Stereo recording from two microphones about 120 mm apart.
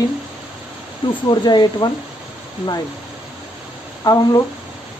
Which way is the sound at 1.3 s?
35° left (ahead or behind).